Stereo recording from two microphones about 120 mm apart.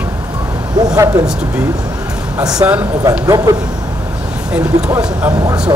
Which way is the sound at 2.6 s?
20° right (ahead or behind).